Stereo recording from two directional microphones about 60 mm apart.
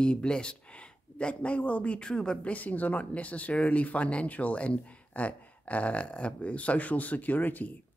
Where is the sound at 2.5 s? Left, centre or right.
Left.